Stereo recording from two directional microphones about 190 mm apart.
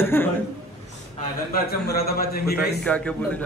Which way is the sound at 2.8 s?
5° left (ahead or behind).